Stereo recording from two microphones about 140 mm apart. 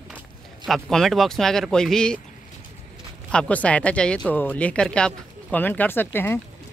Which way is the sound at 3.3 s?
10° left (ahead or behind).